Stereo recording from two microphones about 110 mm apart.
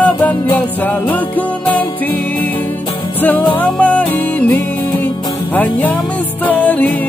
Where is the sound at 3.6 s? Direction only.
15° left (ahead or behind).